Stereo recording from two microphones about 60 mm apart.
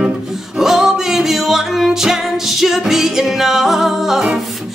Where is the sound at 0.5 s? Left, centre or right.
Centre.